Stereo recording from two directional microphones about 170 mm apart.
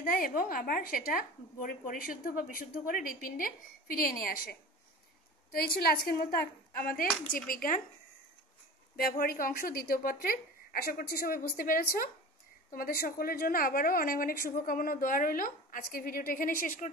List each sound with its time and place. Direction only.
0.0 s speech: 55° left (ahead or behind)
5.8 s speech: 65° left (ahead or behind)
8.9 s speech: 60° left (ahead or behind)